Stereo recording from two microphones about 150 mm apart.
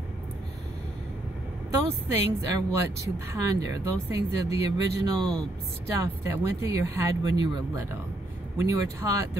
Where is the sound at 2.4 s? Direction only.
20° right (ahead or behind).